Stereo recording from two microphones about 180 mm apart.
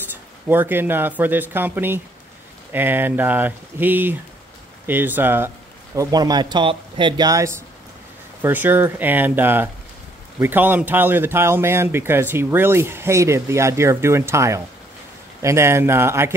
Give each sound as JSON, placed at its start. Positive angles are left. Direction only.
{"t": 0.5, "sound": "speech", "side_deg": -10}
{"t": 5.9, "sound": "speech", "side_deg": -20}